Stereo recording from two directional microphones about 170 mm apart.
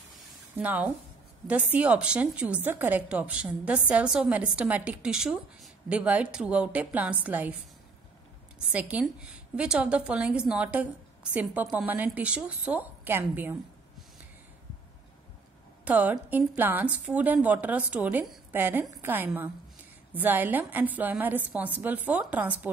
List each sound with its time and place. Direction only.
0.6 s a woman's voice: 10° right (ahead or behind)
8.5 s a woman's voice: 5° right (ahead or behind)
15.8 s a woman's voice: 10° right (ahead or behind)